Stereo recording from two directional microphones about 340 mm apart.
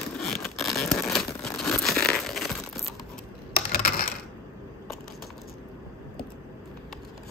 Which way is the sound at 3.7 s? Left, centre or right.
Left.